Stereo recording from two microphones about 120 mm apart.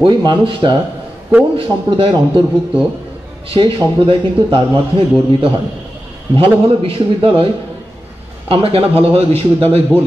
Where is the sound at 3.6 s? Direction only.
45° right (ahead or behind).